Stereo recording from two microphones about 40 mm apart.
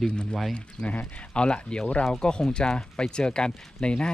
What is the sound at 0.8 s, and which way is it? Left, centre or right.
Speech, left.